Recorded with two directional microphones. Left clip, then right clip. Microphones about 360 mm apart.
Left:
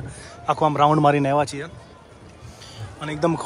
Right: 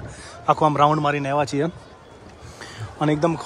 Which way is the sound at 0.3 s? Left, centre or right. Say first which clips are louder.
Right 2 dB; centre.